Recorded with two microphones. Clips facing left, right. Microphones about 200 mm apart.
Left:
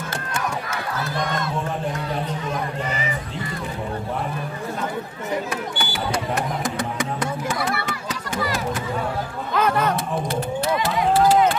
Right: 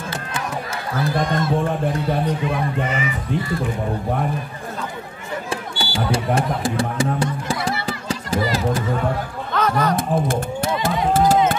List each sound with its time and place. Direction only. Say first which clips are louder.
1.0 s speech: right 7 dB; 25° right (ahead or behind)
2.5 s speech: right 4 dB; 35° left (ahead or behind)
5.5 s music: right 1 dB; 30° right (ahead or behind)
9.5 s music: right 1 dB; 5° left (ahead or behind)
9.9 s a sound: right 4 dB; 50° right (ahead or behind)